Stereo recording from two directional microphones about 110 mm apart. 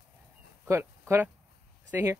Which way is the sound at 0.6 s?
25° right (ahead or behind).